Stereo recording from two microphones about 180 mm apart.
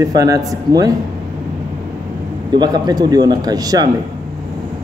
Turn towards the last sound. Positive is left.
turn(degrees=-20)  # may be behind; listen again after turning